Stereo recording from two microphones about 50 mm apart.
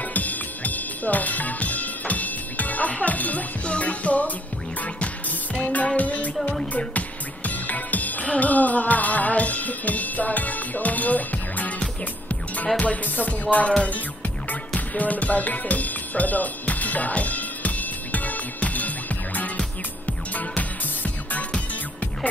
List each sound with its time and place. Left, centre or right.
0.0 s music: left
2.9 s speech: left
4.8 s music: left
5.9 s speech: left
6.9 s music: left
12.7 s speech: left
13.8 s music: left